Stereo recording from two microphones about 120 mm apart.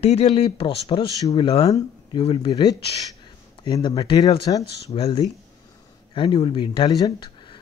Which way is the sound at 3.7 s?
45° left (ahead or behind).